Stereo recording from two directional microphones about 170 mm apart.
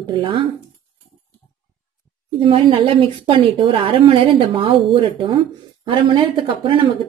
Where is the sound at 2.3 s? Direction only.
30° right (ahead or behind).